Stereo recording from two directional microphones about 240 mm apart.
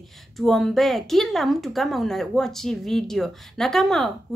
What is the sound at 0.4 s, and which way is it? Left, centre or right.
A woman's voice, centre.